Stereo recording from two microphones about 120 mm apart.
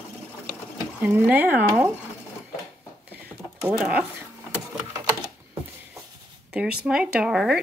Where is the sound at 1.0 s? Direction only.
15° right (ahead or behind).